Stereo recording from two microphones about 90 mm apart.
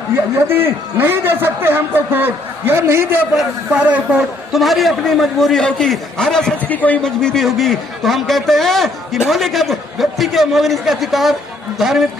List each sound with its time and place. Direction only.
0.1 s a man's voice: 25° right (ahead or behind)
3.3 s a man's voice: 10° right (ahead or behind); by 6.5 s 5° left (ahead or behind)
6.7 s a man's voice: 15° left (ahead or behind); by 12.1 s 5° right (ahead or behind)